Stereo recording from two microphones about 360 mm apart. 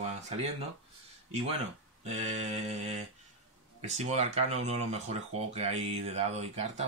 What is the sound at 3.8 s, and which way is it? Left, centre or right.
Speech, centre.